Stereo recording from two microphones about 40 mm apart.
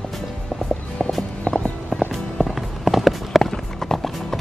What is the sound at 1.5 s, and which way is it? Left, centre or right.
Music, left.